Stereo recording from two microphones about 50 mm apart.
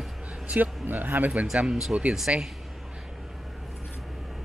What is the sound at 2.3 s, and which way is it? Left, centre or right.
Speech, right.